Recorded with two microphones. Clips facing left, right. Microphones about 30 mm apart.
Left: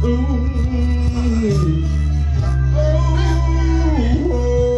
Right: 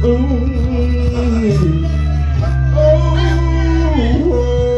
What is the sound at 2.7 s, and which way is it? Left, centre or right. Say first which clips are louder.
Music: right 9 dB; right.